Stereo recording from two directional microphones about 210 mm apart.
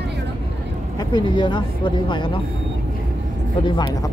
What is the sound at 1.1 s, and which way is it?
Speech, 20° left (ahead or behind).